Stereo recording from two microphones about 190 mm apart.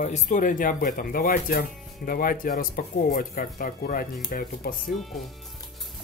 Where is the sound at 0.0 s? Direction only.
40° left (ahead or behind).